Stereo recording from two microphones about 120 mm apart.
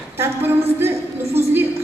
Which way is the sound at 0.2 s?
20° right (ahead or behind).